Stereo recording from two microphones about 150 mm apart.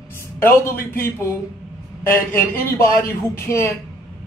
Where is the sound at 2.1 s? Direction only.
15° left (ahead or behind).